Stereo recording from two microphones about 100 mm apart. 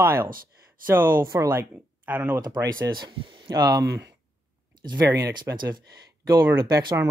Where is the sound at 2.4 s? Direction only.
45° right (ahead or behind).